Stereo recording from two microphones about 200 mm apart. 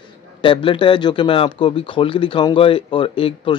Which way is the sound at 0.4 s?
25° left (ahead or behind).